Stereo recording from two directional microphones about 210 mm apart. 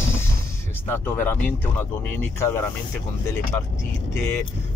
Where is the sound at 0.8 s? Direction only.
10° left (ahead or behind).